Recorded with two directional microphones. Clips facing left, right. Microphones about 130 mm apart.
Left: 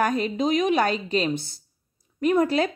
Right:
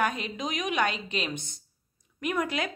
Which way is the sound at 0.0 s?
40° left (ahead or behind).